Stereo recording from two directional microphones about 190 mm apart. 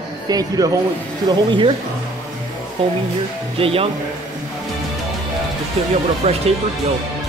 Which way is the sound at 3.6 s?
30° right (ahead or behind).